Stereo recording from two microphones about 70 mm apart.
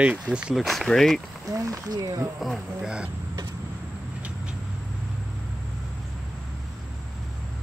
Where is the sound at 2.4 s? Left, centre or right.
Centre.